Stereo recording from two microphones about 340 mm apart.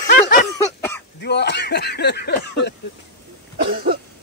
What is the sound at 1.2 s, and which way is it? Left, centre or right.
Speech, left.